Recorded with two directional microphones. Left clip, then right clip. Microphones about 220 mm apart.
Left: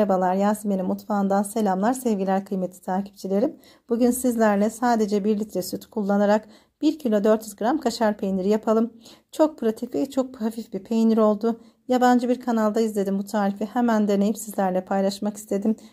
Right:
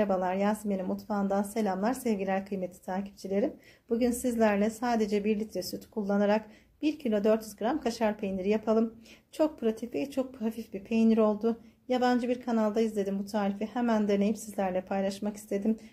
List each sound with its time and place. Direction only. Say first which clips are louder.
0.0 s speech: left 7 dB; 40° left (ahead or behind)
5.2 s speech: left 6 dB; 15° left (ahead or behind)
5.7 s speech: left 7 dB; 40° left (ahead or behind)
6.8 s speech: left 8 dB; 15° left (ahead or behind)
7.1 s speech: left 5 dB; 40° left (ahead or behind)
9.8 s speech: left 7 dB; 15° left (ahead or behind)
11.1 s speech: left 6 dB; 40° left (ahead or behind)